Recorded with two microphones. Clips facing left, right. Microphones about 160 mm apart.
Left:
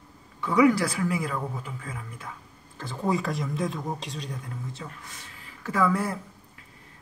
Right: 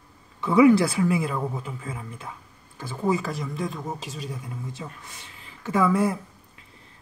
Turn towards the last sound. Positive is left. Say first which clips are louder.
# right 3 dB
turn(degrees=-20)  # may be behind; listen again after turning